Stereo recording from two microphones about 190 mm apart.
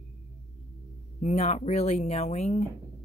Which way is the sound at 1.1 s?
35° left (ahead or behind).